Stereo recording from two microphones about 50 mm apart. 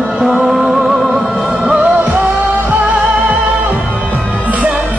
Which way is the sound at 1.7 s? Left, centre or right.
Right.